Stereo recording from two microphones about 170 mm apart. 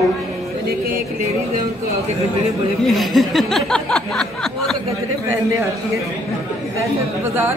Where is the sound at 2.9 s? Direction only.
Centre (ahead or behind).